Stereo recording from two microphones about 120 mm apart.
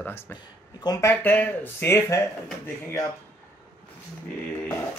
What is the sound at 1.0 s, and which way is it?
A man's voice, 15° left (ahead or behind).